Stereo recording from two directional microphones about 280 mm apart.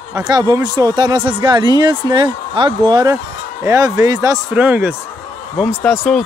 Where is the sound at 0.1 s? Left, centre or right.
Centre.